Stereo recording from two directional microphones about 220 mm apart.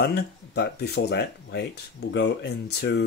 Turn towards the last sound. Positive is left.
turn(degrees=50)  # may be behind; listen again after turning